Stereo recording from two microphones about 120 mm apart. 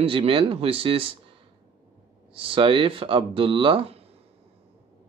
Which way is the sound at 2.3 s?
45° right (ahead or behind).